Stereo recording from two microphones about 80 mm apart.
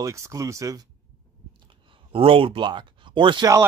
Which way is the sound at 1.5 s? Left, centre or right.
Right.